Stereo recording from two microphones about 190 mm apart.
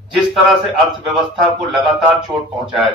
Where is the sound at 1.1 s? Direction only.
Centre (ahead or behind).